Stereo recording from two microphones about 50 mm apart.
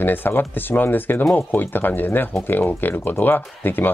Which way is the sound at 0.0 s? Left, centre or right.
Left.